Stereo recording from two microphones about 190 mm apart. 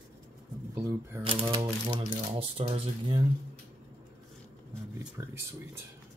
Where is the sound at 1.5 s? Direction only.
25° right (ahead or behind).